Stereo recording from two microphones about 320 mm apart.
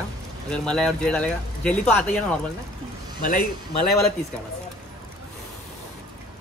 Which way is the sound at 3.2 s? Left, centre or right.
Left.